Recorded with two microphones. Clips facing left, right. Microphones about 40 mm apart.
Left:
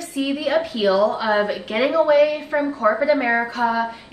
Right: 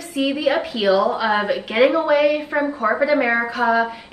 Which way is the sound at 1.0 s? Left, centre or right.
Centre.